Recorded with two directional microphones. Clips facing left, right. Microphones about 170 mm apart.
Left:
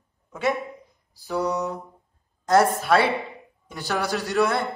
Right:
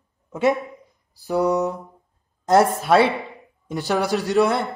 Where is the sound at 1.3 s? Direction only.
50° right (ahead or behind).